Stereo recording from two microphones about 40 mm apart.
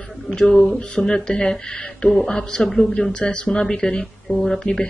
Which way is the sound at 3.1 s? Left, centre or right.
Left.